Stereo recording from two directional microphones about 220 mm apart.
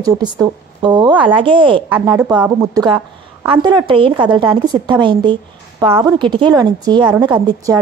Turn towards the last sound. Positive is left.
turn(degrees=-15)  # may be behind; listen again after turning